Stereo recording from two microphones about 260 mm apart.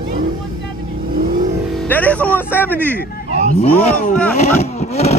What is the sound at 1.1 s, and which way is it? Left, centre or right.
Vehicle, right.